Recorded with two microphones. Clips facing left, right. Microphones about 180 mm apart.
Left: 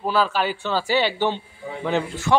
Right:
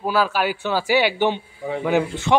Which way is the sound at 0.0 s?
10° right (ahead or behind).